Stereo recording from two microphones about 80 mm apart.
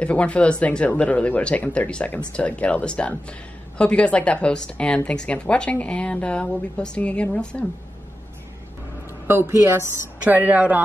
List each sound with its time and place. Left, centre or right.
0.0 s a woman's voice: centre
9.3 s a woman's voice: right
10.2 s speech: right